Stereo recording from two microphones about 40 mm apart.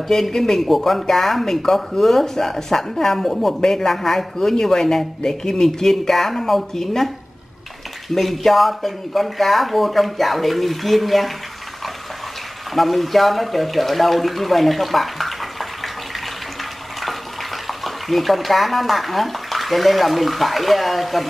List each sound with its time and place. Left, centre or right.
0.1 s a man's voice: centre
8.1 s speech: centre
12.7 s speech: centre
17.0 s speech: centre